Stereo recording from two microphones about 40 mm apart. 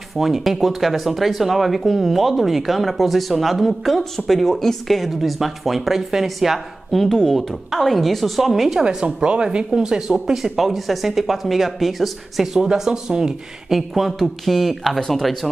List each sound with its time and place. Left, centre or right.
0.1 s speech: centre
8.7 s a woman's voice: right; by 12.4 s centre
12.5 s speech: centre